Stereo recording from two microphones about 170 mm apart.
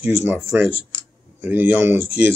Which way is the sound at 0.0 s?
15° right (ahead or behind).